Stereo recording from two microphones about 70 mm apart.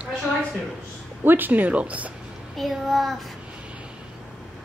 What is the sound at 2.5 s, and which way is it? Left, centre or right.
Speech, centre.